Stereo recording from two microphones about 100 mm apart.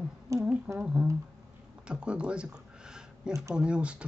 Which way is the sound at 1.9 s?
10° right (ahead or behind).